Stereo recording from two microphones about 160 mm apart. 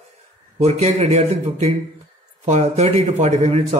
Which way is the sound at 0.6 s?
45° right (ahead or behind).